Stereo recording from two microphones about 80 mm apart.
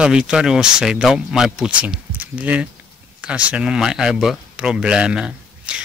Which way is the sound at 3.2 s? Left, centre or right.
Centre.